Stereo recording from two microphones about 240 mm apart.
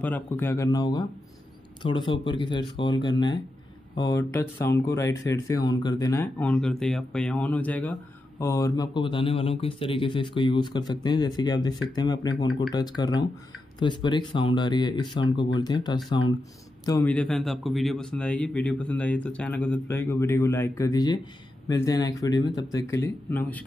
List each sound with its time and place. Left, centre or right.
0.0 s a man's voice: centre